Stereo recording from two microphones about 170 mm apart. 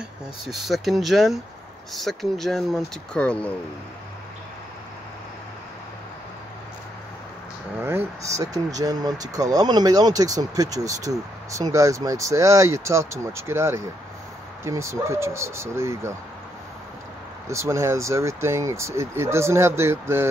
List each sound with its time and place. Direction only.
0.5 s speech: centre (ahead or behind)
7.8 s speech: 15° right (ahead or behind)
17.5 s speech: 15° right (ahead or behind)